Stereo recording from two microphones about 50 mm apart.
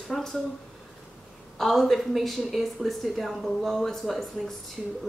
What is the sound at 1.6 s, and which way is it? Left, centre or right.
A woman's voice, centre.